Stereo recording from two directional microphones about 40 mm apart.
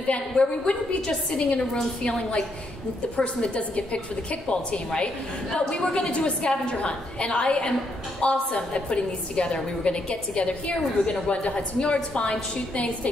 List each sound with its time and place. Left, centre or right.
0.0 s a woman's voice: left